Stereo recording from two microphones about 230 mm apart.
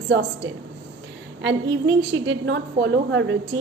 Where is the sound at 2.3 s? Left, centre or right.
Right.